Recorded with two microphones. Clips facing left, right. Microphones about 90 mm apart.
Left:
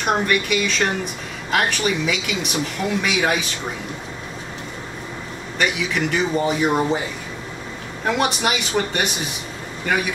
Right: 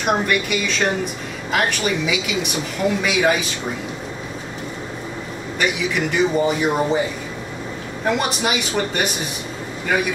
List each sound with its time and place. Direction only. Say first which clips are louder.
0.0 s speech: right 1 dB; centre (ahead or behind)
5.6 s speech: even; centre (ahead or behind)
8.2 s speech: left 1 dB; centre (ahead or behind)